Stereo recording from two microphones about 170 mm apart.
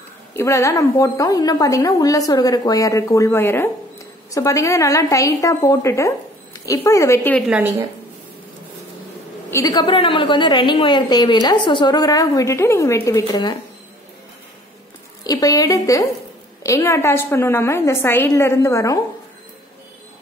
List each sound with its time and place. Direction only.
0.4 s a woman's voice: 20° left (ahead or behind)
7.3 s a woman's voice: 5° right (ahead or behind)
9.5 s a woman's voice: 20° left (ahead or behind)
15.2 s a woman's voice: 20° left (ahead or behind)